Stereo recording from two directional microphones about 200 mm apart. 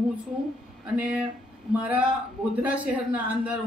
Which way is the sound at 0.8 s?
5° right (ahead or behind).